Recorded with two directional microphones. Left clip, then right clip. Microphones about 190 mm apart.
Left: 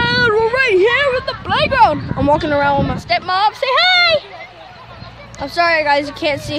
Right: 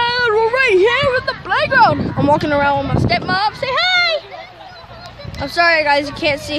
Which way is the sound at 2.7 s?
20° left (ahead or behind).